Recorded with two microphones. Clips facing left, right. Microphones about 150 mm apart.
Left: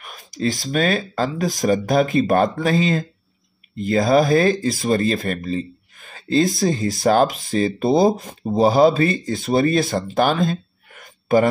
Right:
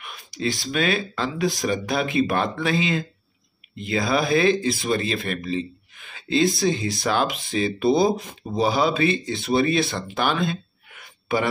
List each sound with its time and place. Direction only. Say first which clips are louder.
0.0 s speech: left 4 dB; 40° left (ahead or behind)